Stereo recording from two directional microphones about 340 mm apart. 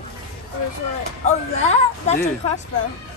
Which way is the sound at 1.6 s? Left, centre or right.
Centre.